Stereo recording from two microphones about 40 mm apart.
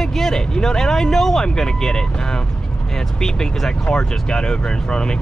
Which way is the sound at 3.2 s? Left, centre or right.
Centre.